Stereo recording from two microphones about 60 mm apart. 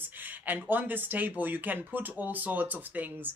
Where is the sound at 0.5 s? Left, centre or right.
Right.